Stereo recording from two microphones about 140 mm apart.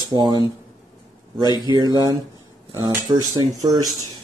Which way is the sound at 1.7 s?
30° right (ahead or behind).